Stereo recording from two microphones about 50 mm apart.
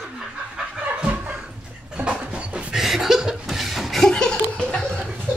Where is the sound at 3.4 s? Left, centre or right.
Centre.